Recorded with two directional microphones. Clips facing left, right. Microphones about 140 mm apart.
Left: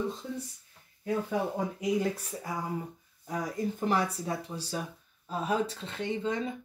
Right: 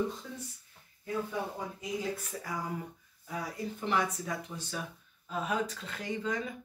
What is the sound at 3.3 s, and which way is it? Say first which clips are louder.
Speech: left 5 dB; 45° left (ahead or behind).